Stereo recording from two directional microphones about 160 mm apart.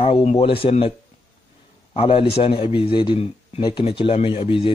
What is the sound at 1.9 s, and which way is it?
A man's voice, 35° left (ahead or behind).